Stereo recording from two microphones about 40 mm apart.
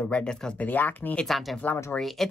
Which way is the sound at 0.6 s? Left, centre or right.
Left.